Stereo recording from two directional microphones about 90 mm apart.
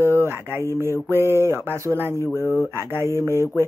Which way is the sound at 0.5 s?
25° right (ahead or behind).